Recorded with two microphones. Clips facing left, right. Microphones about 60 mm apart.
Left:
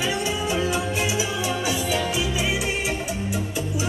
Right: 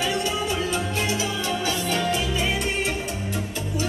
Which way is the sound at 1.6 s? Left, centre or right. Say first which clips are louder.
Right 2 dB; centre.